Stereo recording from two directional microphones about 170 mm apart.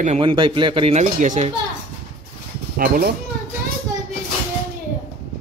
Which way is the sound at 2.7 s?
60° right (ahead or behind).